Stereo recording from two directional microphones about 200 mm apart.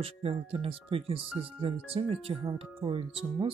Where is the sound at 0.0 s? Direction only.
30° right (ahead or behind).